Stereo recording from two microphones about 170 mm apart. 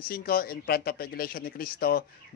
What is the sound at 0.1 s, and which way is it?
Speech, 60° left (ahead or behind).